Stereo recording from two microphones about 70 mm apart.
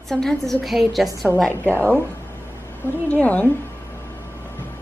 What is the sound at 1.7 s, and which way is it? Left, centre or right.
Speech, left.